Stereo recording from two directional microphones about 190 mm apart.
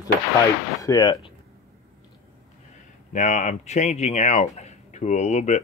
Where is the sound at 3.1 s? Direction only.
40° left (ahead or behind).